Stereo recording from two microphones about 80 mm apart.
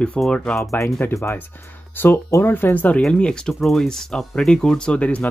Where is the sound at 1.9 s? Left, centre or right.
Left.